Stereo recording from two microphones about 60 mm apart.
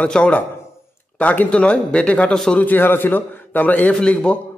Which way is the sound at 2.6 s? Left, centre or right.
Left.